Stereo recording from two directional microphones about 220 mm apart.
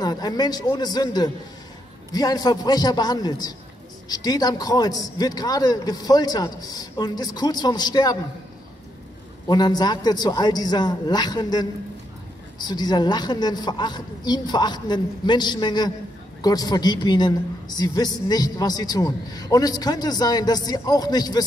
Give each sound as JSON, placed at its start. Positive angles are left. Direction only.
{"t": 0.0, "sound": "a woman's voice", "side_deg": 15}
{"t": 9.5, "sound": "a woman's voice", "side_deg": 20}